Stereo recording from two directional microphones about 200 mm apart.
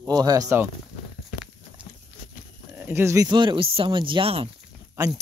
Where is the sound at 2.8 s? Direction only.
10° right (ahead or behind); by 4.4 s 25° right (ahead or behind).